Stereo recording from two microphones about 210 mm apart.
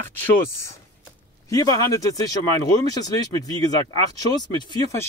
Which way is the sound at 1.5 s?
15° left (ahead or behind).